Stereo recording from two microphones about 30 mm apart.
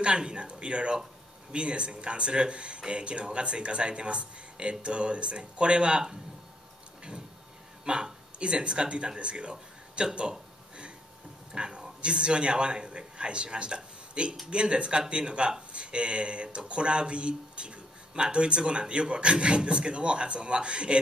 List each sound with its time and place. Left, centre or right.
0.0 s speech: right
7.8 s speech: right
11.5 s a man's voice: right